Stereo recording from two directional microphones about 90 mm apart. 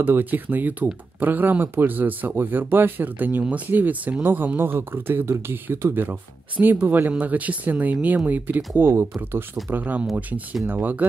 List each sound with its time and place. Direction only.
0.0 s speech: 20° right (ahead or behind)